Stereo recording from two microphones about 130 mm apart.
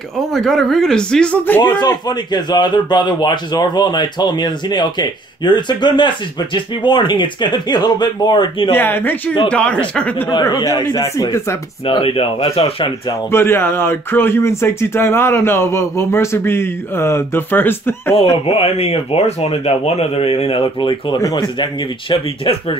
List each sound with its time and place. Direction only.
0.3 s speech: centre (ahead or behind)
1.6 s a man's voice: 30° left (ahead or behind)
8.7 s speech: 15° left (ahead or behind)
10.4 s speech: 25° left (ahead or behind)
11.8 s speech: 45° left (ahead or behind)
13.3 s speech: 20° left (ahead or behind)
18.1 s speech: 50° left (ahead or behind)